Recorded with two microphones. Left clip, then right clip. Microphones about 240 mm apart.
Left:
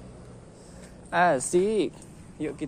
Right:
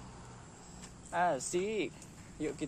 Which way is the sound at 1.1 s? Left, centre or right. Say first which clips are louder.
Left 10 dB; left.